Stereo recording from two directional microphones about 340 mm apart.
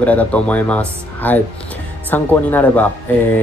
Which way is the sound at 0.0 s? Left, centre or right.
Centre.